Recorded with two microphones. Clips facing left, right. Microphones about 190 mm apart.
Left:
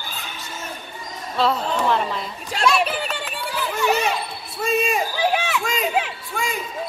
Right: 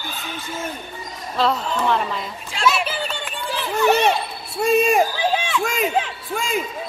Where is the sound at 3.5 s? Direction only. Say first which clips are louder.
Right 4 dB; 25° right (ahead or behind).